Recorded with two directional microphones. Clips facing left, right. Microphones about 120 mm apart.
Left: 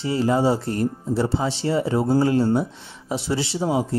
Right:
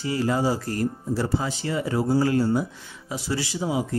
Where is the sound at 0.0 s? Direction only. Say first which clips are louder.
Left 4 dB; 25° left (ahead or behind).